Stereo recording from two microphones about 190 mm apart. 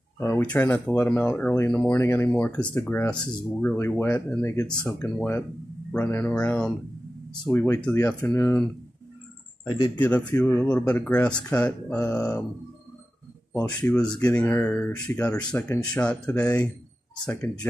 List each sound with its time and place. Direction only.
0.2 s speech: 10° left (ahead or behind)
9.9 s speech: 10° left (ahead or behind)
13.5 s speech: 15° left (ahead or behind)